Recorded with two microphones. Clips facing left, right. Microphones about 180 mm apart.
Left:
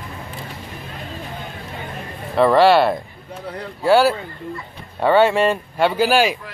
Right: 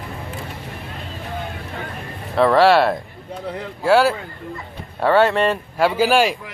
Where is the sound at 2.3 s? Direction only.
Centre (ahead or behind).